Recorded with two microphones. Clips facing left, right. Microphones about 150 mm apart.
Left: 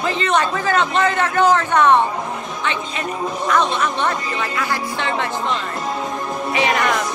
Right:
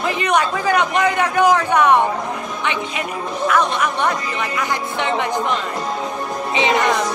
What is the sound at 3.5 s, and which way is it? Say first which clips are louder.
Speech: even; 10° right (ahead or behind).